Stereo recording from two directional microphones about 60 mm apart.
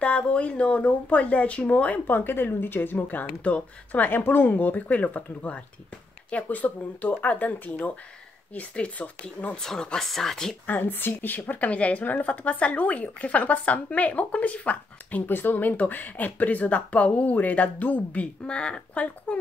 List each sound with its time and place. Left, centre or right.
0.0 s a woman's voice: left
2.0 s a woman's voice: left
9.6 s speech: centre
10.7 s a woman's voice: left; by 19.3 s centre